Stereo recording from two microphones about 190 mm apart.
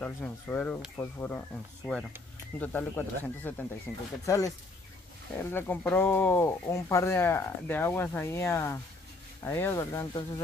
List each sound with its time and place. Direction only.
0.0 s speech: 10° left (ahead or behind)
2.6 s speech: 10° left (ahead or behind)
4.3 s speech: 15° left (ahead or behind)